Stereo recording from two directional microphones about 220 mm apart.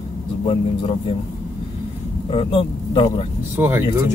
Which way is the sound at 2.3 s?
25° left (ahead or behind).